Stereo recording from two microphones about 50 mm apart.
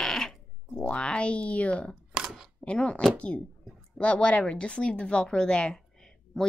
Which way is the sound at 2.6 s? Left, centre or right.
Left.